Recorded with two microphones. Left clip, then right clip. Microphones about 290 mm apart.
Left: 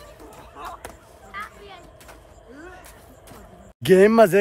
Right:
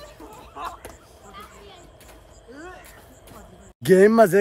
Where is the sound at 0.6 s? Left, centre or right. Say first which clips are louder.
Right 3 dB; centre.